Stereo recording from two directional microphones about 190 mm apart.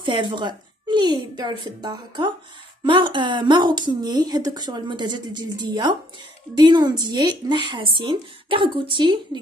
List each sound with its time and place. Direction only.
0.0 s speech: 25° right (ahead or behind)